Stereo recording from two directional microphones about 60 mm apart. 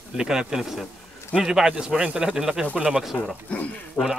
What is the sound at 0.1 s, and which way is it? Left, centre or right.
A man's voice, centre.